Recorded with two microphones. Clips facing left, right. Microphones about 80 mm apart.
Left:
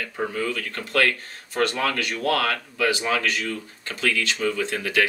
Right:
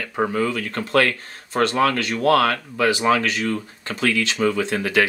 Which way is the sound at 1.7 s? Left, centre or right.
Right.